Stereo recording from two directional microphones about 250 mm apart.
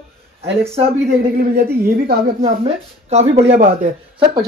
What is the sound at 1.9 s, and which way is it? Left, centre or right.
Speech, right.